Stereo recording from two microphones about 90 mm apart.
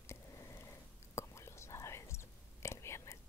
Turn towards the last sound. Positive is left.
turn(degrees=30)  # may be behind; listen again after turning